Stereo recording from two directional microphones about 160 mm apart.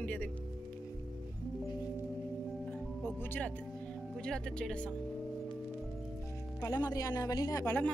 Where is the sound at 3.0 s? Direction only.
10° left (ahead or behind).